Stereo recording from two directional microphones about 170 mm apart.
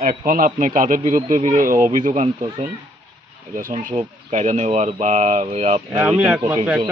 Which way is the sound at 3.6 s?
50° right (ahead or behind).